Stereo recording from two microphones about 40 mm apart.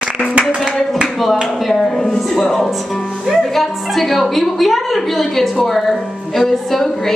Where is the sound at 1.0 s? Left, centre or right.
Centre.